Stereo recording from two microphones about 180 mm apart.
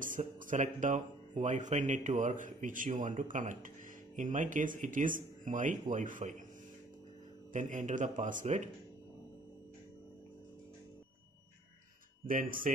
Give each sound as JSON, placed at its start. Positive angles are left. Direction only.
{"t": 0.0, "sound": "speech", "side_deg": -45}
{"t": 7.5, "sound": "speech", "side_deg": -45}
{"t": 12.3, "sound": "speech", "side_deg": -50}